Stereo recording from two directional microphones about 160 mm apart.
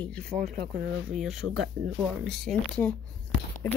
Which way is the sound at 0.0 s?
5° left (ahead or behind).